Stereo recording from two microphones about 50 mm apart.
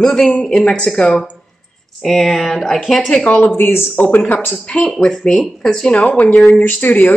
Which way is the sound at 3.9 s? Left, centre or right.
Left.